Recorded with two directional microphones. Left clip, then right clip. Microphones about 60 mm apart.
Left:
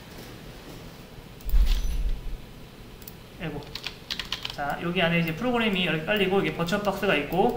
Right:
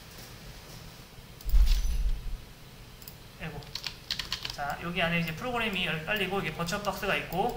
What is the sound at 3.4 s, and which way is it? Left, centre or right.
Speech, right.